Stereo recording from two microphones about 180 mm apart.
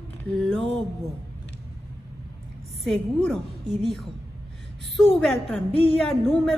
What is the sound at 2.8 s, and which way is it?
A woman's voice, 5° left (ahead or behind).